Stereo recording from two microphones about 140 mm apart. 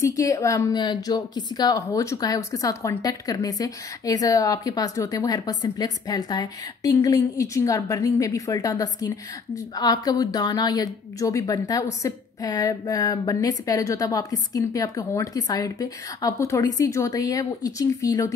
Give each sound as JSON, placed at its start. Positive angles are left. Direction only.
{"t": 0.0, "sound": "speech", "side_deg": 25}